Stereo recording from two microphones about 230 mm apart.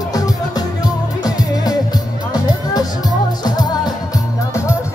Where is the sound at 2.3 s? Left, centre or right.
Centre.